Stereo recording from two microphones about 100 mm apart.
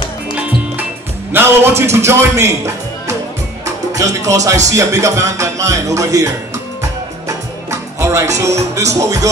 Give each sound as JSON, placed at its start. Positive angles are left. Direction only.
{"t": 1.3, "sound": "speech", "side_deg": -25}
{"t": 8.0, "sound": "speech", "side_deg": -30}